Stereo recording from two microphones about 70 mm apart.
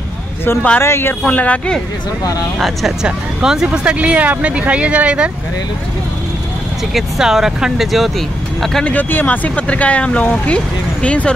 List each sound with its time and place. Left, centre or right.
0.7 s a man's voice: left
1.2 s speech: centre
2.6 s speech: centre
3.1 s speech: centre
6.9 s speech: centre
8.8 s speech: left